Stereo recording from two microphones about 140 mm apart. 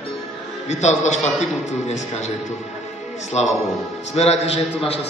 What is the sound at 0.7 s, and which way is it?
A man's voice, 55° left (ahead or behind).